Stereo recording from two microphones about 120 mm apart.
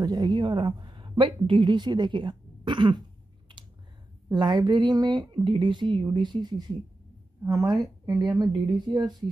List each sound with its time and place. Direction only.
0.0 s a woman's voice: 35° right (ahead or behind)
4.3 s speech: 35° right (ahead or behind)